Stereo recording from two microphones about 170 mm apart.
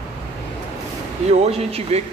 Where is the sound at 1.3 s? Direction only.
35° right (ahead or behind).